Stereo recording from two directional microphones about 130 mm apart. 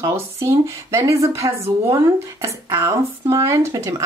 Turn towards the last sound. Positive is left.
turn(degrees=-20)  # may be behind; listen again after turning